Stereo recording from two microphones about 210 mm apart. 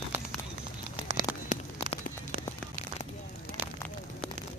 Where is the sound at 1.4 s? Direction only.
35° left (ahead or behind).